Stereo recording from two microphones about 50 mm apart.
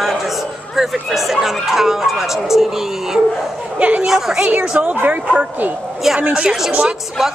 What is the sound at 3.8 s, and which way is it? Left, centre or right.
Speech, right.